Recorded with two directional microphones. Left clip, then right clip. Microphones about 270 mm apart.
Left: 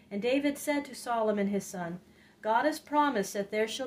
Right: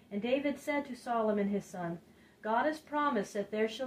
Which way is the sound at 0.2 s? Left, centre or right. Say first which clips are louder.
Left 3 dB; left.